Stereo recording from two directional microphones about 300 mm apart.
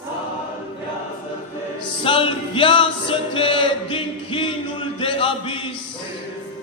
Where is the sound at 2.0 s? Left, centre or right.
Centre.